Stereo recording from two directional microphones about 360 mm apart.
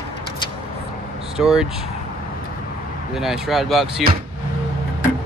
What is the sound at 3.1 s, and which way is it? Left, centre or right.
Speech, centre.